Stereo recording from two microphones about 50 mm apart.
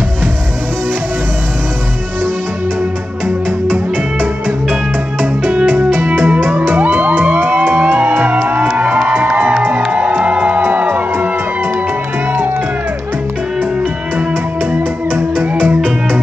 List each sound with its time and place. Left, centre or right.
5.4 s music: right
15.7 s music: right